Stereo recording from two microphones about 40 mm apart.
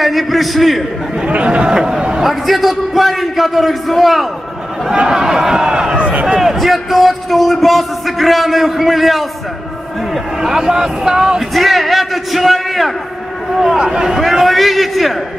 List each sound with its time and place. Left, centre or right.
0.0 s a man's voice: centre
1.2 s speech: right
2.2 s a man's voice: centre
5.0 s speech: centre
5.9 s a sound: right
6.2 s a man's voice: centre
10.4 s speech: centre
11.5 s a man's voice: centre
13.7 s a man's voice: centre